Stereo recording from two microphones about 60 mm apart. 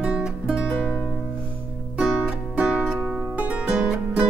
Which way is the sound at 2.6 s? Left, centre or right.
Centre.